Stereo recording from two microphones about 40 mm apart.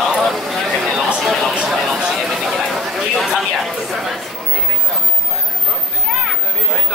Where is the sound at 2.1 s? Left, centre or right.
Centre.